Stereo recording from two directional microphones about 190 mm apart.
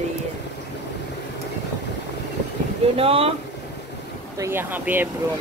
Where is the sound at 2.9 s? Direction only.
30° right (ahead or behind).